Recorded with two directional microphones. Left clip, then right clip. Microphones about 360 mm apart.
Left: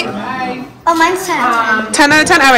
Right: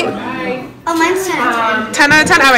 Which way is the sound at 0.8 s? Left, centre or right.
Left.